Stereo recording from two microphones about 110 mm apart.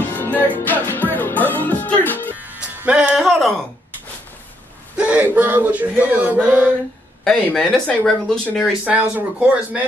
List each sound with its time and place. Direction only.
0.1 s music: 15° left (ahead or behind)
2.3 s music: 15° right (ahead or behind)
3.2 s a sound: centre (ahead or behind)
4.9 s male singing: 10° right (ahead or behind)
7.2 s speech: 5° left (ahead or behind)
8.8 s speech: 10° right (ahead or behind)